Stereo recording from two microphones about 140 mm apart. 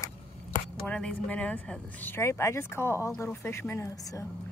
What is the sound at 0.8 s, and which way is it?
A woman's voice, 10° left (ahead or behind).